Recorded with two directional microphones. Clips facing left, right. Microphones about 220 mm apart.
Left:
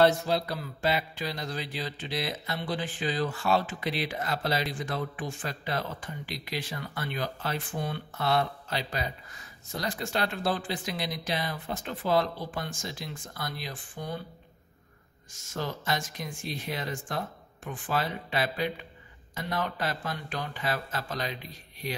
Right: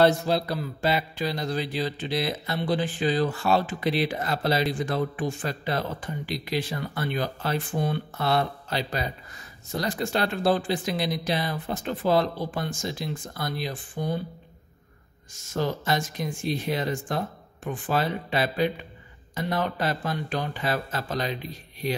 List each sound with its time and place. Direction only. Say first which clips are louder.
0.0 s mantra: right 3 dB; 30° right (ahead or behind)
12.5 s speech: right 6 dB; 30° right (ahead or behind)
15.5 s speech: right 6 dB; 30° right (ahead or behind)